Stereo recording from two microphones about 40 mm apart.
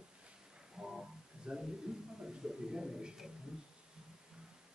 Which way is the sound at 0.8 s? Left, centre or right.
Centre.